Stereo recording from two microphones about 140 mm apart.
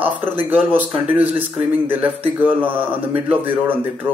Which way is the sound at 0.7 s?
10° right (ahead or behind).